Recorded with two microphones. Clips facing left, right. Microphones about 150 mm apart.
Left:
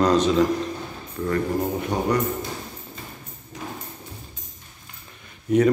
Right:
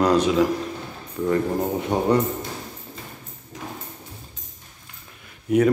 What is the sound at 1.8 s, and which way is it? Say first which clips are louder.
Speech: right 6 dB; 25° right (ahead or behind).